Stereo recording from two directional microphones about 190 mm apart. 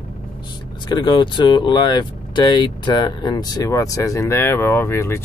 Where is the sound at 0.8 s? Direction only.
25° left (ahead or behind).